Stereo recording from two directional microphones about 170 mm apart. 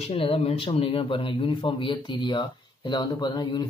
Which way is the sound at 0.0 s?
35° left (ahead or behind).